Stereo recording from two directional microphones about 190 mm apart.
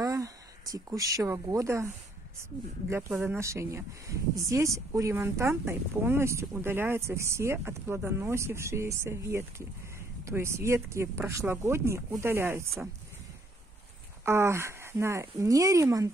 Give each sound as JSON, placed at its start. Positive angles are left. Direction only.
{"t": 0.0, "sound": "speech", "side_deg": -15}
{"t": 2.9, "sound": "speech", "side_deg": -10}
{"t": 14.2, "sound": "speech", "side_deg": -15}